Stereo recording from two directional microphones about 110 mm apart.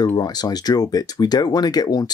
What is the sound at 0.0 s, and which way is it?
Speech, 40° left (ahead or behind).